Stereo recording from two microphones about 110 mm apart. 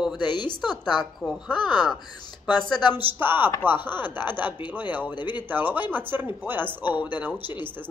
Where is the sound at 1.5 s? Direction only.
45° left (ahead or behind).